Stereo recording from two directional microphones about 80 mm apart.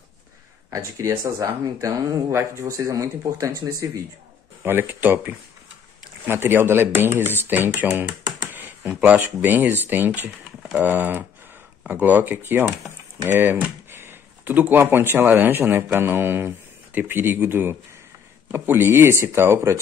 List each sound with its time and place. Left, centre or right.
0.7 s speech: right
4.6 s speech: right